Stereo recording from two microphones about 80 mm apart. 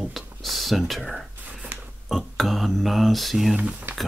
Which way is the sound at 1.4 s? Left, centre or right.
Centre.